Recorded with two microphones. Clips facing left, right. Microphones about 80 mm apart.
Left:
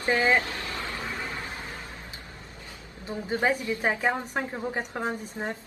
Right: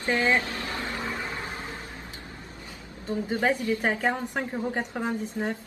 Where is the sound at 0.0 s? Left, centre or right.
Left.